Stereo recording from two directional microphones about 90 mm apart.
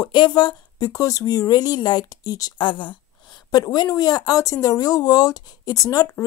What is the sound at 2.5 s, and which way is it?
Speech, 65° left (ahead or behind).